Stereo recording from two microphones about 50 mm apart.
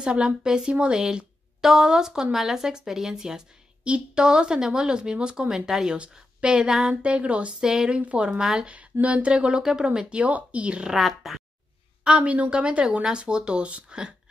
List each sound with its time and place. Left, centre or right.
0.0 s a woman's voice: centre
6.9 s speech: right
7.6 s a woman's voice: centre
7.9 s speech: right
9.0 s speech: right
11.0 s speech: centre
12.0 s speech: right